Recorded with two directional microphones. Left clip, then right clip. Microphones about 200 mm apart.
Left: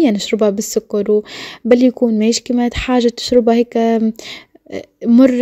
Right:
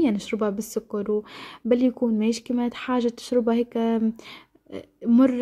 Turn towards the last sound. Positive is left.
turn(degrees=30)  # may be behind; listen again after turning